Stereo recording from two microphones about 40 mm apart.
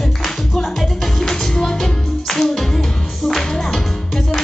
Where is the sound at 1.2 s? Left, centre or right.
Centre.